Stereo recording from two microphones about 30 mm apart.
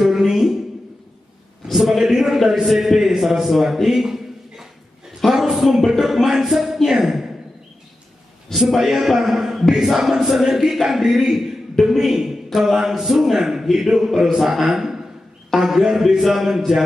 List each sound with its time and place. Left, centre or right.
0.0 s a sound: centre
1.7 s a man's voice: centre
3.9 s a sound: centre
5.9 s speech: centre
6.9 s a sound: centre
8.5 s a man's voice: centre
10.2 s a man's voice: centre
11.8 s a man's voice: centre
12.1 s a man's voice: centre